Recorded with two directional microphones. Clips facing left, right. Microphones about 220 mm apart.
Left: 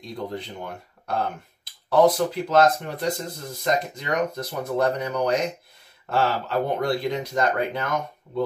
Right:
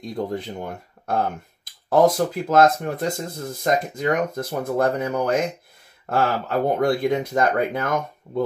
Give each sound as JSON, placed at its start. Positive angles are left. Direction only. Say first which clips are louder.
{"t": 0.0, "sound": "speech", "louder": "right 5 dB", "side_deg": -50}